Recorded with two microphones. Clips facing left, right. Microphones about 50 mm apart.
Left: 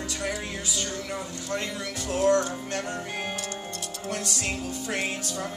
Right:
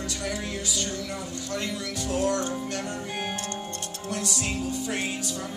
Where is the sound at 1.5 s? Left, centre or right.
Left.